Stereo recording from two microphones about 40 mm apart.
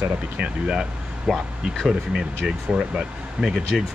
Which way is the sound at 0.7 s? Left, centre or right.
Centre.